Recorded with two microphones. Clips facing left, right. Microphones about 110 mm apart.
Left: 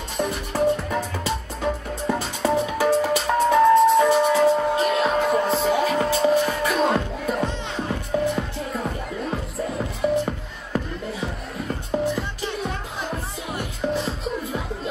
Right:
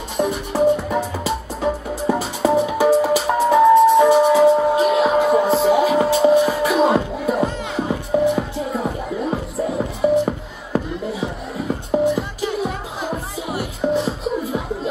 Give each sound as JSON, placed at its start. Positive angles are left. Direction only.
{"t": 0.2, "sound": "music", "side_deg": -5}